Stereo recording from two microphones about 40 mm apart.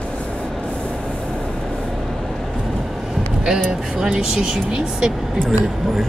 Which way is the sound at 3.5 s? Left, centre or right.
Centre.